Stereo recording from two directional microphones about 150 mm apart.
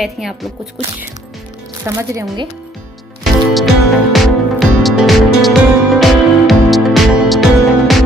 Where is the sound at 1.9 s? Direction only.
20° right (ahead or behind).